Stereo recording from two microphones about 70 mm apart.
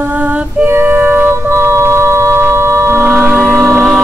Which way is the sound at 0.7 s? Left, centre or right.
Right.